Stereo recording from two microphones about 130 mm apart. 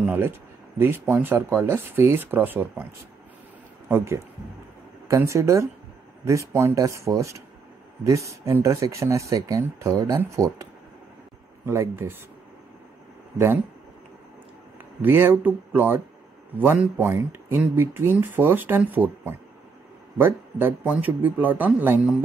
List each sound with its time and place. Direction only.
0.0 s speech: 15° right (ahead or behind)
3.9 s speech: 20° right (ahead or behind)
15.0 s speech: 15° right (ahead or behind)